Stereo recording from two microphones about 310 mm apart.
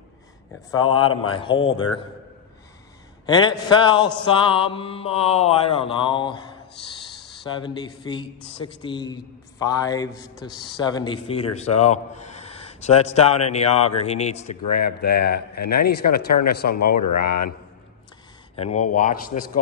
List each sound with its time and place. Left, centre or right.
0.8 s a man's voice: centre
3.3 s a man's voice: centre
7.4 s a man's voice: centre
14.7 s speech: left
15.0 s a man's voice: left
16.9 s speech: left
18.6 s a man's voice: left